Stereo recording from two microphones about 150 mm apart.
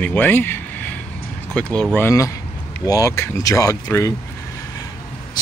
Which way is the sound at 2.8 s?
20° left (ahead or behind).